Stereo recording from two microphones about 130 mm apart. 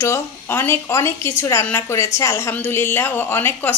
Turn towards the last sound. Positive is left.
turn(degrees=15)  # may be behind; listen again after turning